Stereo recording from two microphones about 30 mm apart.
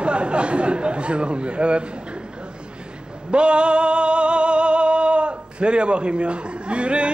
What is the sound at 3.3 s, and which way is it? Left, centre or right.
Music, right.